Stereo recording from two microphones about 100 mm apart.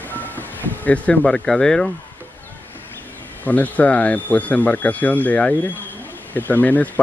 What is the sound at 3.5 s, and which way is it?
Speech, 15° left (ahead or behind).